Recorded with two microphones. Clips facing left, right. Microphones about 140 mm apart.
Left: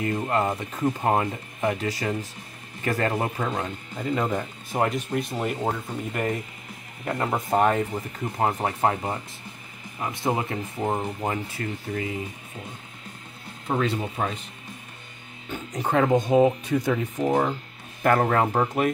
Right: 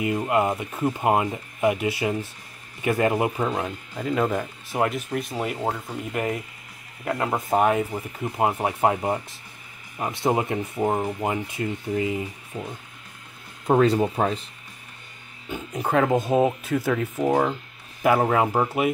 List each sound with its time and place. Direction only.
0.0 s speech: 10° right (ahead or behind)
3.4 s speech: 5° right (ahead or behind)
7.1 s speech: centre (ahead or behind)
9.9 s speech: 25° right (ahead or behind)
10.8 s speech: 10° right (ahead or behind)
11.5 s speech: 20° right (ahead or behind)
13.7 s speech: 40° right (ahead or behind)
15.5 s speech: 5° right (ahead or behind)